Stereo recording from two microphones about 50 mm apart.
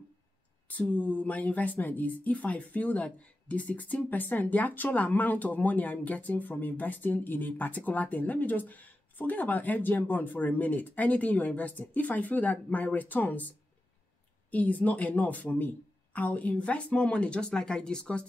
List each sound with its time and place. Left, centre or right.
0.7 s speech: left